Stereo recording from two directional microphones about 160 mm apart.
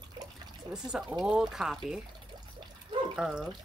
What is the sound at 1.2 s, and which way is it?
Speech, 5° right (ahead or behind).